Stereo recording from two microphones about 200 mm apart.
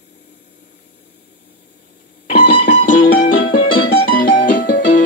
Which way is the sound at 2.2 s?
50° left (ahead or behind).